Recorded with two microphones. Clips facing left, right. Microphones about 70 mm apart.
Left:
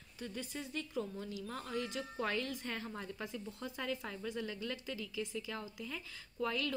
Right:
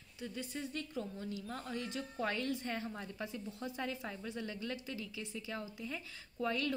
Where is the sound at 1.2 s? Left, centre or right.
Right.